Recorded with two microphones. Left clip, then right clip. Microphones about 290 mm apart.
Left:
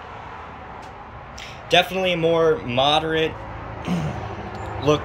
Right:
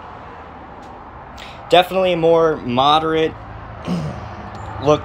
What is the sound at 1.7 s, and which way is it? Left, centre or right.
Speech, centre.